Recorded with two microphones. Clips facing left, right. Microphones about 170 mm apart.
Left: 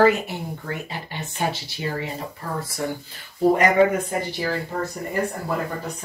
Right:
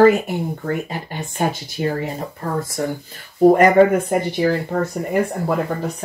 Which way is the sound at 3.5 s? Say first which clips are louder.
Right 5 dB; 55° right (ahead or behind).